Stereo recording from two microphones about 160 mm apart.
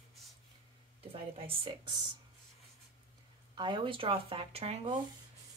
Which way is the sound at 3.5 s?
30° right (ahead or behind).